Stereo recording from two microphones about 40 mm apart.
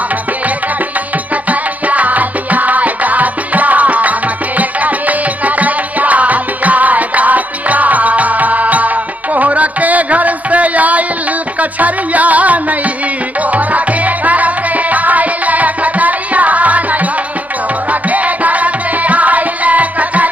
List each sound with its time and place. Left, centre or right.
1.3 s music: right
18.1 s music: right